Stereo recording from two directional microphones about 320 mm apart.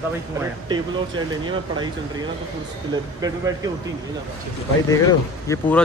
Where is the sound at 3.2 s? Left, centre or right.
Centre.